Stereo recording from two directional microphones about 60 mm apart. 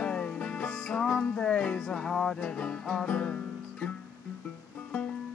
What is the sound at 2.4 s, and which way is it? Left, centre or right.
Music, centre.